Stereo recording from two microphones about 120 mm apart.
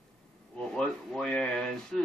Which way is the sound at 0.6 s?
5° left (ahead or behind).